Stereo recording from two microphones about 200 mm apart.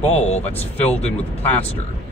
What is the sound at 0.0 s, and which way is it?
Speech, 30° left (ahead or behind).